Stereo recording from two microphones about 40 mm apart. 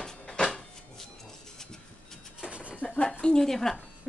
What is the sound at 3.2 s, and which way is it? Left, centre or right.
Speech, centre.